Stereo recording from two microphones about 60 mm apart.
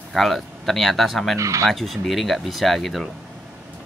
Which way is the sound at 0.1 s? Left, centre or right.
Centre.